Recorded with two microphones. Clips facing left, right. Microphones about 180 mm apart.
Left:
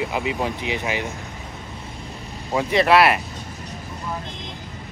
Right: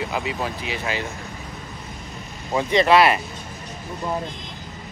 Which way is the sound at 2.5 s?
Centre (ahead or behind).